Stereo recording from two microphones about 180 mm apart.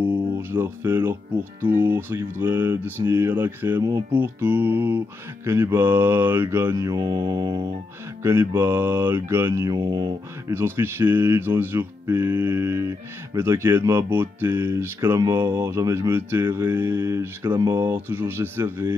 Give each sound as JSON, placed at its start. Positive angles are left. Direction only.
{"t": 0.5, "sound": "mantra", "side_deg": -10}